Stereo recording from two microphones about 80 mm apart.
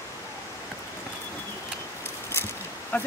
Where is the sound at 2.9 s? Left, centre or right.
Left.